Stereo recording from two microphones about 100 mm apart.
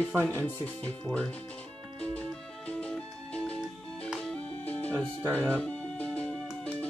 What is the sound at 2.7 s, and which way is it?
Music, 10° left (ahead or behind).